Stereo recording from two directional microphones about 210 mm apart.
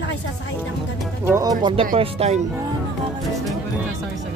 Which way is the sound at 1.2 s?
15° right (ahead or behind).